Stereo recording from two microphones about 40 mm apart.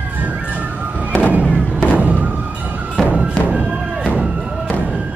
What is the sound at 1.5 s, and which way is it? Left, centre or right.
Thump, right.